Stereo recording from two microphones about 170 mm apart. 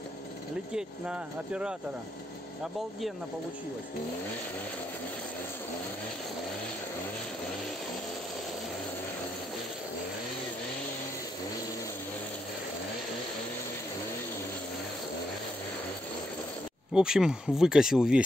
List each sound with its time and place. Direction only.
0.7 s speech: 5° right (ahead or behind)
16.9 s speech: 5° right (ahead or behind)